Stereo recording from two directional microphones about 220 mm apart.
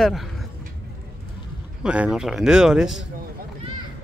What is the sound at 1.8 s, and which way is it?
Speech, 5° right (ahead or behind).